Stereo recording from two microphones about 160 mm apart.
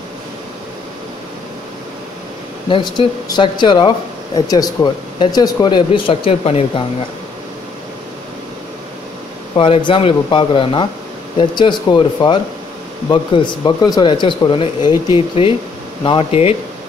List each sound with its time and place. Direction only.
2.7 s speech: 30° left (ahead or behind)
9.6 s speech: 30° left (ahead or behind)